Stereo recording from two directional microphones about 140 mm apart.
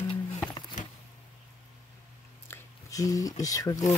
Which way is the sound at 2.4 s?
20° left (ahead or behind).